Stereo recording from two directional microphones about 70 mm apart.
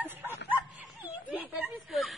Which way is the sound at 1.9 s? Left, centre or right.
Centre.